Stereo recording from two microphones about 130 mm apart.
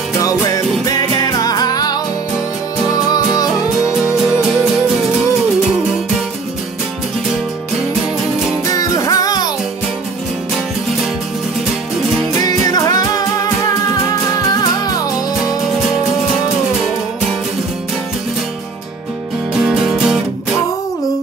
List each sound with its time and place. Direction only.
0.2 s music: 25° left (ahead or behind)
3.4 s music: 5° right (ahead or behind)
8.6 s music: 25° left (ahead or behind)
12.4 s music: 30° left (ahead or behind)
19.5 s music: 5° right (ahead or behind)